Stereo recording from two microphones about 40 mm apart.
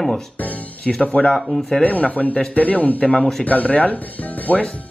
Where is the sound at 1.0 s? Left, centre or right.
Left.